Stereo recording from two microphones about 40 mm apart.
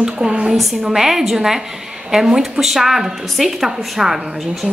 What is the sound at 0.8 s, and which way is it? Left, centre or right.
A woman's voice, centre.